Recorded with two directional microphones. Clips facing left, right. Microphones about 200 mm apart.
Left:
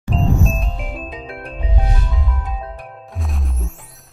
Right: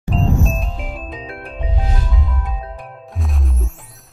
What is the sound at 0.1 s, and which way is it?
Music, centre (ahead or behind).